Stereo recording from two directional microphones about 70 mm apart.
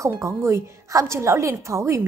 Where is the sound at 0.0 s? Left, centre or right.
Right.